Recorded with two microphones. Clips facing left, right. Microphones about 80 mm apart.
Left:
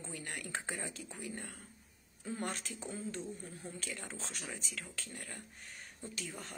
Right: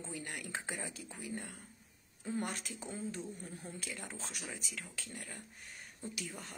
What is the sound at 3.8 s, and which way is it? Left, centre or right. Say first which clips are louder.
Speech: left 1 dB; centre.